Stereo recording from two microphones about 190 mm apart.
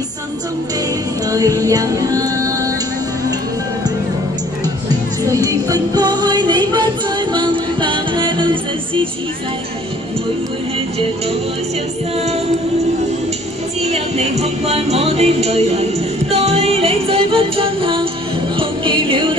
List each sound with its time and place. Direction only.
1.3 s music: 20° right (ahead or behind)
5.2 s music: 20° right (ahead or behind)
13.8 s music: 35° right (ahead or behind)